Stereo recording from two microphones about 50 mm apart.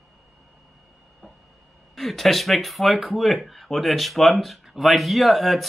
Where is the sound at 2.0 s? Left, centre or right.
Centre.